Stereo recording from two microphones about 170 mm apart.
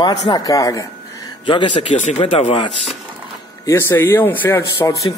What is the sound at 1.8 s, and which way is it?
Speech, 45° left (ahead or behind).